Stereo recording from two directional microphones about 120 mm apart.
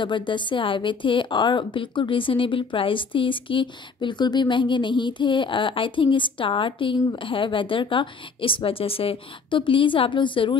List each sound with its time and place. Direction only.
0.0 s a woman's voice: 40° left (ahead or behind)